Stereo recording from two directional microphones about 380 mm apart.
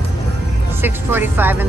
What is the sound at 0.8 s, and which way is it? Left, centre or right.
Speech, centre.